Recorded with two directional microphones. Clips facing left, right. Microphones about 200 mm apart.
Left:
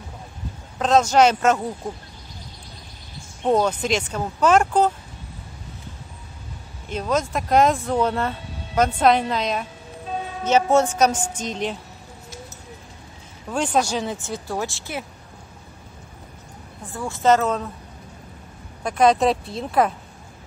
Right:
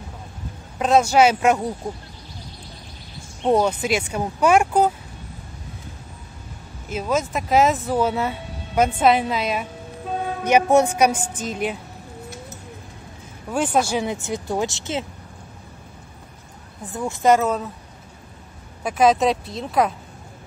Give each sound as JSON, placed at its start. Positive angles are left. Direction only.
{"t": 0.7, "sound": "speech", "side_deg": -10}
{"t": 3.4, "sound": "speech", "side_deg": -10}
{"t": 6.9, "sound": "speech", "side_deg": -5}
{"t": 13.5, "sound": "speech", "side_deg": -5}
{"t": 16.9, "sound": "speech", "side_deg": -20}
{"t": 18.8, "sound": "speech", "side_deg": -5}